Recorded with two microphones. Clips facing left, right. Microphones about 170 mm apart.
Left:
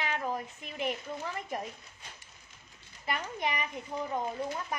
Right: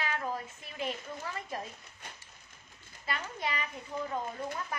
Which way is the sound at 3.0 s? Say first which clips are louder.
Left 3 dB; 20° left (ahead or behind).